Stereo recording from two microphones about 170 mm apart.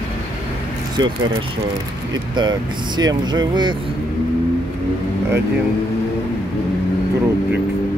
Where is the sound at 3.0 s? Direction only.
25° right (ahead or behind).